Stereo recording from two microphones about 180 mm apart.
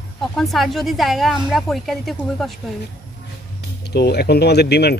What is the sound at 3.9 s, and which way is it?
Speech, 65° left (ahead or behind).